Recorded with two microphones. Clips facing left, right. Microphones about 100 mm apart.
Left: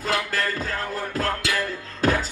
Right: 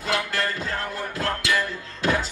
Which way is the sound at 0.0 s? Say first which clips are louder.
Left 1 dB; 40° left (ahead or behind).